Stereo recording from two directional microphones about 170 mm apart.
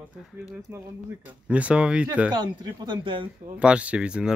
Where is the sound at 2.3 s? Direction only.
25° right (ahead or behind).